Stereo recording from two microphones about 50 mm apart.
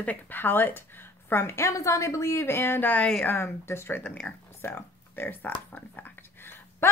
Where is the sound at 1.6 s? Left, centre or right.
Left.